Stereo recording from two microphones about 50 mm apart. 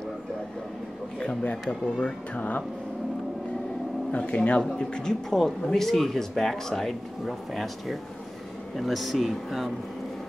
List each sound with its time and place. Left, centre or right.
1.2 s speech: left
2.3 s speech: left
4.2 s speech: left; by 9.7 s centre